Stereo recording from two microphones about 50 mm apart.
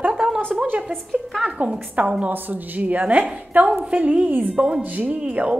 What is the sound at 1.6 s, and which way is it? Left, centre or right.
A woman's voice, right.